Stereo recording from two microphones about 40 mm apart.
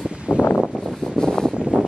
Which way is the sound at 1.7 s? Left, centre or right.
Right.